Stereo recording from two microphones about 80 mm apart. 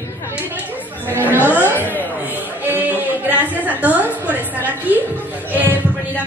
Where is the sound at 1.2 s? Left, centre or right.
Left.